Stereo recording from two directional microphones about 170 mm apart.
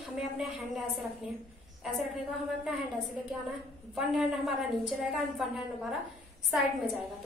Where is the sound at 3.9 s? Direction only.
Centre (ahead or behind).